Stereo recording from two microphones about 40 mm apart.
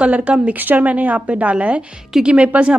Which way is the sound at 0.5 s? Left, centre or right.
Right.